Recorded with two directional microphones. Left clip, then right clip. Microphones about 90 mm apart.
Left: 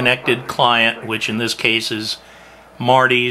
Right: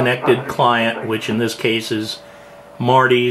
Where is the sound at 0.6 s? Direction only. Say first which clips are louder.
Left 1 dB; 15° left (ahead or behind).